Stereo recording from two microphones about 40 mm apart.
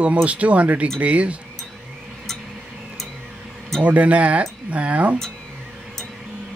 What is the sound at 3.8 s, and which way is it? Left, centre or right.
Speech, right.